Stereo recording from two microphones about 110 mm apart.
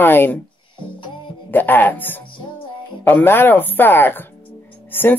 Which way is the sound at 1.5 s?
15° left (ahead or behind).